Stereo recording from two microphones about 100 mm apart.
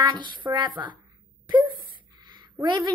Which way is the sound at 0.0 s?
50° right (ahead or behind).